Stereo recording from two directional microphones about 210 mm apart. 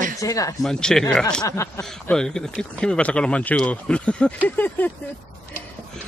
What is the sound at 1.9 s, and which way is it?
Speech, 5° left (ahead or behind).